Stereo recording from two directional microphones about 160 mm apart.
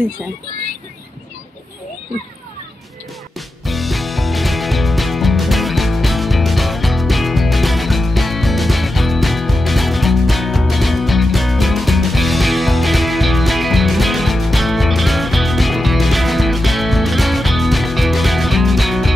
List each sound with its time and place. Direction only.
3.3 s music: centre (ahead or behind)